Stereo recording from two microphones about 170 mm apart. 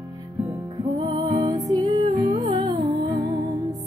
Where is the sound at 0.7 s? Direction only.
25° right (ahead or behind).